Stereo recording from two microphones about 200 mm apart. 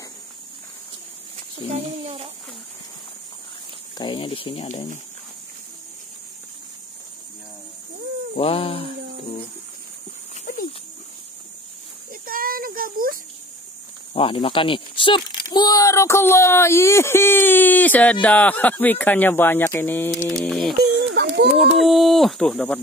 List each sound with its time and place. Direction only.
1.7 s speech: 30° right (ahead or behind)
4.0 s speech: 25° left (ahead or behind)
8.4 s speech: 30° left (ahead or behind)
10.4 s dog: 45° left (ahead or behind)
12.1 s a sound: 45° right (ahead or behind)
14.1 s a child's voice: 30° left (ahead or behind); by 20.7 s centre (ahead or behind)
20.7 s a sound: 55° right (ahead or behind)
21.7 s speech: centre (ahead or behind)